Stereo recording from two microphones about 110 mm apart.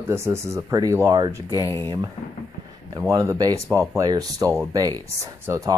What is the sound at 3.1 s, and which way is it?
Speech, 35° right (ahead or behind).